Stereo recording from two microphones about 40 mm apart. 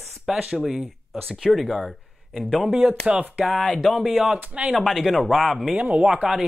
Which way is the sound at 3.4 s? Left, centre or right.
Centre.